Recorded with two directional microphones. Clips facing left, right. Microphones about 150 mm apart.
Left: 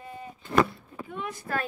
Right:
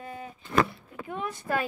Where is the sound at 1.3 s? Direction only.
25° right (ahead or behind).